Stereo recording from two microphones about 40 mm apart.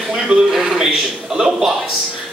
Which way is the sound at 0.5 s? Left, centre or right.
Centre.